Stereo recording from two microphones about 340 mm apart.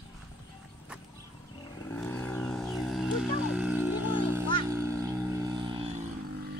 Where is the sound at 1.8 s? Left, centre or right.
Centre.